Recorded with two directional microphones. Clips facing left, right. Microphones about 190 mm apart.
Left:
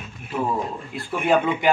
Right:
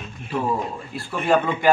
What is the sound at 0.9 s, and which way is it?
Speech, 20° left (ahead or behind).